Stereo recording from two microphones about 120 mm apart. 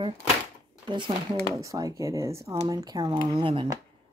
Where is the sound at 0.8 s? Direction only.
40° right (ahead or behind).